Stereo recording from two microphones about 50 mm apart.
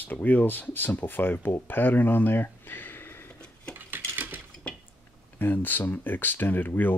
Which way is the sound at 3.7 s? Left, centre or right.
Right.